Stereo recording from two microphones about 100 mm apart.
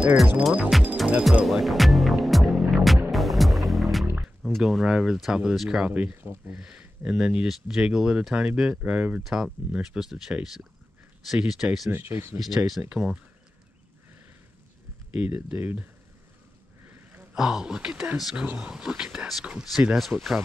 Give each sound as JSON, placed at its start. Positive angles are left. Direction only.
{"t": 0.9, "sound": "music", "side_deg": -10}
{"t": 4.4, "sound": "speech", "side_deg": 0}
{"t": 11.9, "sound": "speech", "side_deg": -25}
{"t": 12.4, "sound": "speech", "side_deg": 0}
{"t": 15.1, "sound": "speech", "side_deg": -15}
{"t": 16.8, "sound": "a sound", "side_deg": -20}
{"t": 17.4, "sound": "speech", "side_deg": -5}